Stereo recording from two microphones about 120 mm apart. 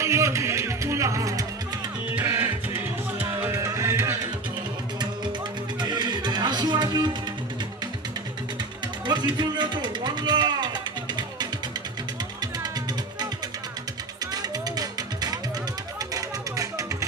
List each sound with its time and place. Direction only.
0.0 s music: 25° right (ahead or behind)
5.8 s music: 35° right (ahead or behind)
9.0 s a sound: 35° right (ahead or behind)
14.3 s music: 35° right (ahead or behind)